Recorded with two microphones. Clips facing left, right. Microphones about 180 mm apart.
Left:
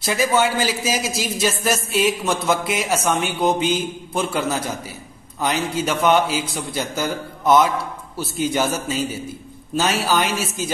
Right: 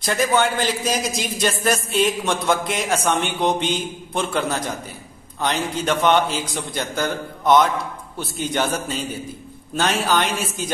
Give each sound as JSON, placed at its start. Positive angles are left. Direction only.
{"t": 0.0, "sound": "a man's voice", "side_deg": 5}